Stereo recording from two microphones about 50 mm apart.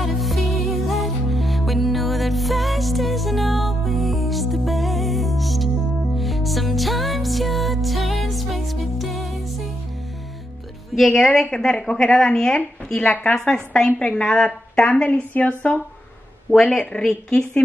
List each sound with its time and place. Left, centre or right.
0.0 s music: centre
11.0 s a woman's voice: centre
13.0 s a woman's voice: left
17.0 s a woman's voice: centre